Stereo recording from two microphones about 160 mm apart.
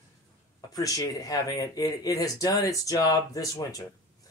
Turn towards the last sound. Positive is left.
turn(degrees=20)  # may be behind; listen again after turning